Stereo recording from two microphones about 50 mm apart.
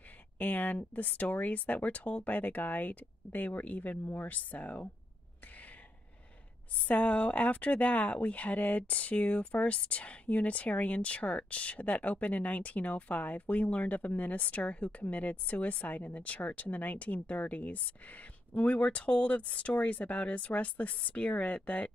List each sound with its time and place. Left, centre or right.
0.4 s speech: left
4.0 s speech: left
6.9 s speech: left